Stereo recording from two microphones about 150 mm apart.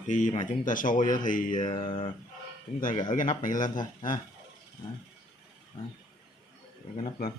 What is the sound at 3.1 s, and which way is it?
Speech, 60° left (ahead or behind).